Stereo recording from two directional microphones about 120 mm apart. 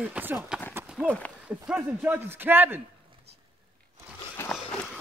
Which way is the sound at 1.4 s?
10° right (ahead or behind).